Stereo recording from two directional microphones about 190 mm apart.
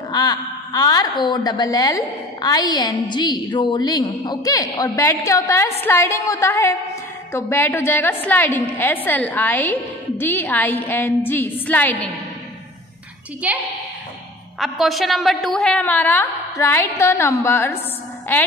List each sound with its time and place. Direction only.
0.1 s a woman's voice: 20° left (ahead or behind)
13.4 s a woman's voice: 5° right (ahead or behind); by 17.7 s 10° left (ahead or behind)